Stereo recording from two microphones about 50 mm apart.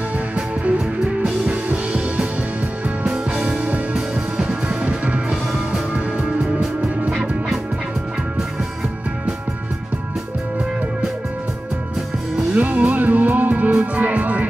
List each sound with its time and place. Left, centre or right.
1.2 s music: right
6.4 s music: centre
12.5 s music: right